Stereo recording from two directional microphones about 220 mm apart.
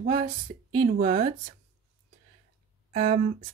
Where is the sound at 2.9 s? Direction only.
30° right (ahead or behind).